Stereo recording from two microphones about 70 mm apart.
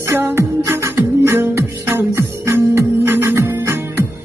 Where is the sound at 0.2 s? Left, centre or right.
Right.